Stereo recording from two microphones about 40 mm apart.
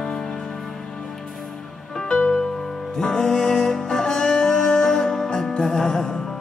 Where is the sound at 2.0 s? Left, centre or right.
Left.